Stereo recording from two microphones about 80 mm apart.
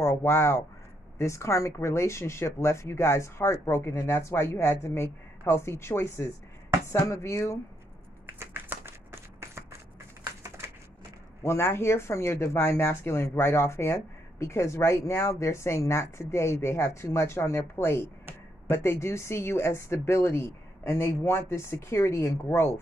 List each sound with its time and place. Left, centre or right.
0.0 s speech: left
8.3 s a sound: right
11.4 s speech: left